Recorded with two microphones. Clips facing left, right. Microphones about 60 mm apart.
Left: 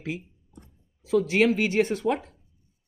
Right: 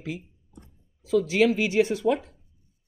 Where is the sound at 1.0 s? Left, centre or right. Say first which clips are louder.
Even; left.